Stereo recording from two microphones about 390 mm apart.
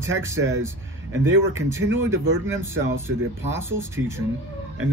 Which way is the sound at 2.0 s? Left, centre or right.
Centre.